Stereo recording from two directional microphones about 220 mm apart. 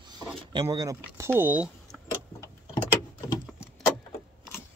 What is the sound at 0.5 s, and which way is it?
Speech, 20° right (ahead or behind).